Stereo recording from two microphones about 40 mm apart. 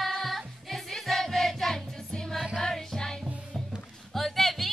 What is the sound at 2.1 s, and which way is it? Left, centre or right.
Music, centre.